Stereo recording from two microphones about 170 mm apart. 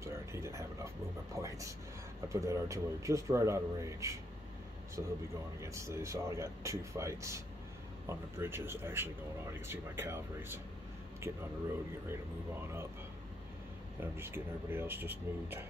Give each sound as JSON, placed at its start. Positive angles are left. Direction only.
{"t": 0.0, "sound": "a sound", "side_deg": -15}
{"t": 2.2, "sound": "a man's voice", "side_deg": -15}
{"t": 13.9, "sound": "a man's voice", "side_deg": -15}